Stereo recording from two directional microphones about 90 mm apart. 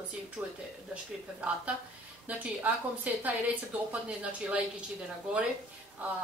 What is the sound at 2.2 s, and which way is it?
A woman's voice, 15° right (ahead or behind).